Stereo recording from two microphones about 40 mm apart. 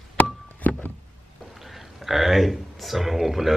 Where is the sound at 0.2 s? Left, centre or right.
Left.